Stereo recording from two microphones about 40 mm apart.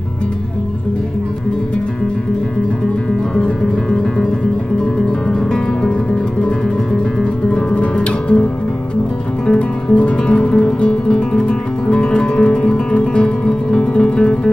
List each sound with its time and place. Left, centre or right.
7.2 s music: left
9.5 s music: left